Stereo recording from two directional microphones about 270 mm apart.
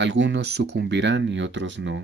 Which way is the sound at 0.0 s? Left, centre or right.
Right.